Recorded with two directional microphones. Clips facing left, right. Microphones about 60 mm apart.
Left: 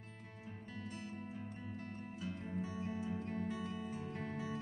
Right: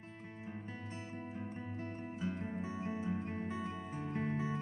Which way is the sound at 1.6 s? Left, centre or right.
Right.